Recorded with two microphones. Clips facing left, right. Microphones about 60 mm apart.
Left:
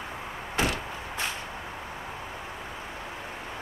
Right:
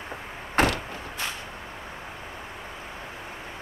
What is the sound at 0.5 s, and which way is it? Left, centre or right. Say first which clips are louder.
Door: right 5 dB; right.